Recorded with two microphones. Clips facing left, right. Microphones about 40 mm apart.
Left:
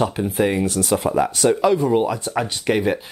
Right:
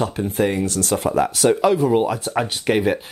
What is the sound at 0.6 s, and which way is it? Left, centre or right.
Speech, left.